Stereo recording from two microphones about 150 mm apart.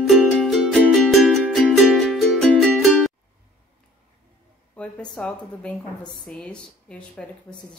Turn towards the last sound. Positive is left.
turn(degrees=5)  # may be behind; listen again after turning